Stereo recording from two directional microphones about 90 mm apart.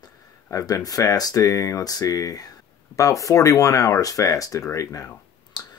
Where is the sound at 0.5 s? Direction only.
35° left (ahead or behind).